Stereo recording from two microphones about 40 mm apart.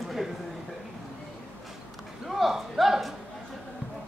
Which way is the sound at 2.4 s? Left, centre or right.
Centre.